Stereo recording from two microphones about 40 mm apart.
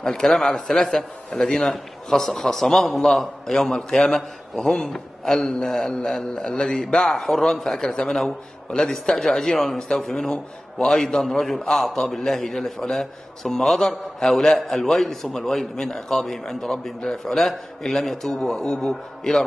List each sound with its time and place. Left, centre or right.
0.0 s a man's voice: centre